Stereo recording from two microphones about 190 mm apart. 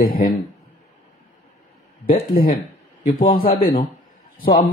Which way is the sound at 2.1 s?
50° left (ahead or behind).